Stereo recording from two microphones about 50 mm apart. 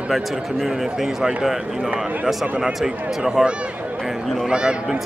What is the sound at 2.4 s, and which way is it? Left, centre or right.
A man's voice, centre.